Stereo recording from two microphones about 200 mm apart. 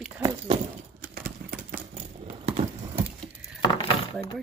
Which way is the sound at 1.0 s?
50° right (ahead or behind).